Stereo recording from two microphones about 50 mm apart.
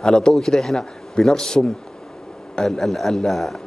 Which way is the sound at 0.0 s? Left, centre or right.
Centre.